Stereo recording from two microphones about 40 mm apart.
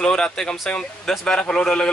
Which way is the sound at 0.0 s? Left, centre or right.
Centre.